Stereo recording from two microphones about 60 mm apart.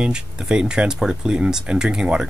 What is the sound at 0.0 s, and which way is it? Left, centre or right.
Speech, centre.